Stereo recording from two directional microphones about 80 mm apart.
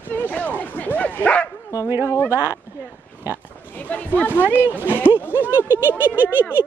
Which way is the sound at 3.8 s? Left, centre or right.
Centre.